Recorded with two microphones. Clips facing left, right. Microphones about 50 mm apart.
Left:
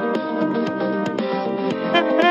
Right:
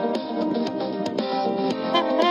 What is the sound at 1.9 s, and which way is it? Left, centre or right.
Music, left.